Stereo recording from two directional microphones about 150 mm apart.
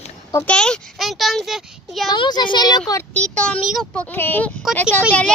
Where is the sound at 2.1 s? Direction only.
30° left (ahead or behind).